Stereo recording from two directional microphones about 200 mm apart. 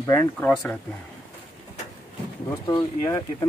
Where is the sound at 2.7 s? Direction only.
20° left (ahead or behind).